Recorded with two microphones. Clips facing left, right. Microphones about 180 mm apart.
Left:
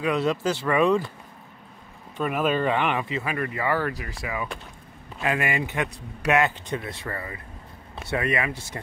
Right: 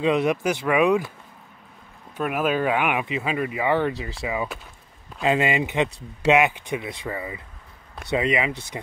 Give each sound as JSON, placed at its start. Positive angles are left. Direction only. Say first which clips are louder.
{"t": 0.0, "sound": "speech", "louder": "right 3 dB", "side_deg": -20}
{"t": 2.1, "sound": "speech", "louder": "right 1 dB", "side_deg": -5}